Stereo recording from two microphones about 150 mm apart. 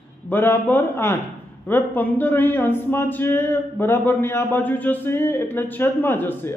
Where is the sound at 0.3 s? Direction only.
15° left (ahead or behind).